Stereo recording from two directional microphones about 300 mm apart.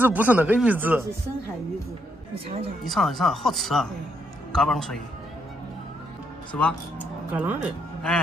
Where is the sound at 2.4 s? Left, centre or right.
Centre.